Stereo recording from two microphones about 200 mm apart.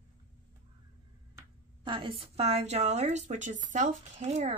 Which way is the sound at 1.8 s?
25° right (ahead or behind).